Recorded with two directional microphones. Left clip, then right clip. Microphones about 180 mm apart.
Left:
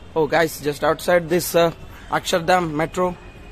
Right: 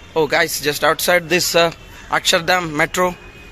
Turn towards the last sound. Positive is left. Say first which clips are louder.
# right 4 dB
turn(degrees=10)  # may be behind; listen again after turning